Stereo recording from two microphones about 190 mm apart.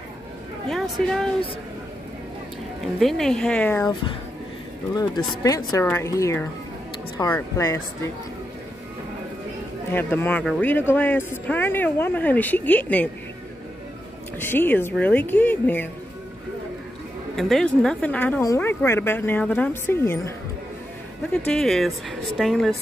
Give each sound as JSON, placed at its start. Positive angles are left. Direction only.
{"t": 0.7, "sound": "speech", "side_deg": 0}
{"t": 3.0, "sound": "speech", "side_deg": 0}
{"t": 4.9, "sound": "speech", "side_deg": 20}
{"t": 9.9, "sound": "speech", "side_deg": 10}
{"t": 14.4, "sound": "speech", "side_deg": 10}
{"t": 17.4, "sound": "speech", "side_deg": 0}
{"t": 21.5, "sound": "speech", "side_deg": 0}